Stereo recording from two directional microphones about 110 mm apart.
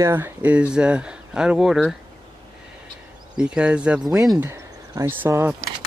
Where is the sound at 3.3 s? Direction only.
10° right (ahead or behind).